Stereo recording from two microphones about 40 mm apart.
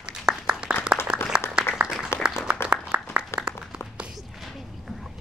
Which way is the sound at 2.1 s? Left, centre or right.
Left.